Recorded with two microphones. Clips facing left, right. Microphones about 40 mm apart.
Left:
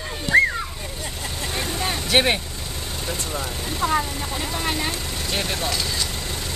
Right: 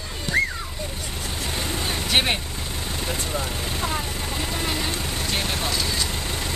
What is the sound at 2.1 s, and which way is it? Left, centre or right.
Speech, centre.